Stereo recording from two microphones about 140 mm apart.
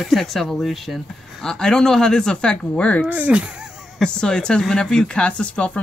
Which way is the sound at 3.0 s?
10° right (ahead or behind).